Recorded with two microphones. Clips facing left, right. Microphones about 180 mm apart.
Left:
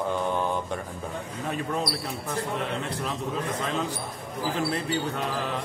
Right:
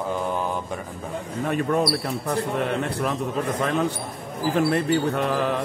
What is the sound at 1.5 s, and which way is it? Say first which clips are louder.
Speech: right 7 dB; 60° right (ahead or behind).